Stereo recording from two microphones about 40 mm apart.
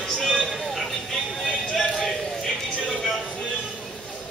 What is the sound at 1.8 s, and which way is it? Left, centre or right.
Clip-clop, centre.